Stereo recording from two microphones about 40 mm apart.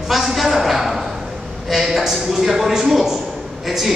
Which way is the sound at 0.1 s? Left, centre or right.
Centre.